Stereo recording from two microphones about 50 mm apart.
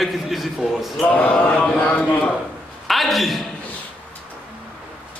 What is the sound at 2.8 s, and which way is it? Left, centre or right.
Speech, centre.